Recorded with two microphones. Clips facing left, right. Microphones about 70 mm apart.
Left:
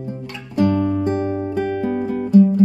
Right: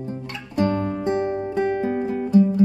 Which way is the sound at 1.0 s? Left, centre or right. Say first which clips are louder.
Left 2 dB; right.